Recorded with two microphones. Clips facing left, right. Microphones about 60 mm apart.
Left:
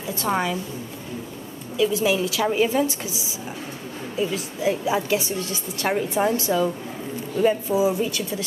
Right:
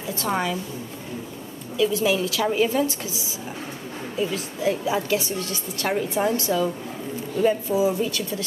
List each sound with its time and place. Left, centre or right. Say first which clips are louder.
0.1 s a woman's voice: left 1 dB; centre
1.8 s a woman's voice: even; centre
4.2 s a woman's voice: left 1 dB; centre